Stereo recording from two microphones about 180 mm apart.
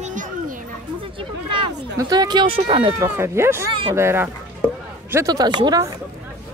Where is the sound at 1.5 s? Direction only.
25° right (ahead or behind).